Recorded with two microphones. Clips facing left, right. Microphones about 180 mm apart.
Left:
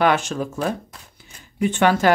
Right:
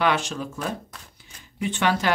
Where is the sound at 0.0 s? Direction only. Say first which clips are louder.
Left 4 dB; 50° left (ahead or behind).